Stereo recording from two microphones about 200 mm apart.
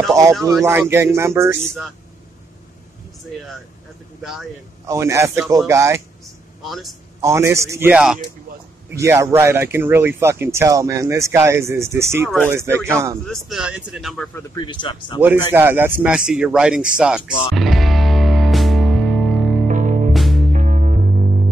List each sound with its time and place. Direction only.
0.1 s speech: 15° right (ahead or behind)
4.8 s speech: 15° right (ahead or behind)
6.2 s a sound: centre (ahead or behind)
7.2 s speech: 15° right (ahead or behind)
13.3 s speech: centre (ahead or behind)
14.5 s speech: 25° left (ahead or behind)
15.1 s speech: 10° right (ahead or behind)
16.9 s music: 5° right (ahead or behind)
19.7 s music: 40° right (ahead or behind)
20.1 s music: centre (ahead or behind)
20.5 s music: 40° right (ahead or behind)